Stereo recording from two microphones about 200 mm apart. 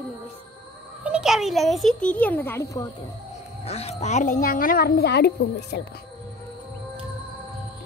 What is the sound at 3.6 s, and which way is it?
A woman's voice, 30° left (ahead or behind).